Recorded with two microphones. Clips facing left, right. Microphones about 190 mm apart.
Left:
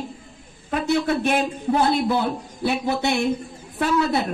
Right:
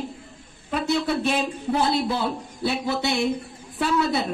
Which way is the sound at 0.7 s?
55° left (ahead or behind).